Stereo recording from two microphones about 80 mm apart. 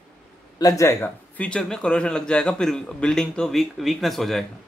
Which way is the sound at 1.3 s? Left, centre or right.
Centre.